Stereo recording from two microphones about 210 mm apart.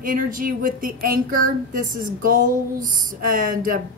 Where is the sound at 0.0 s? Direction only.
40° right (ahead or behind).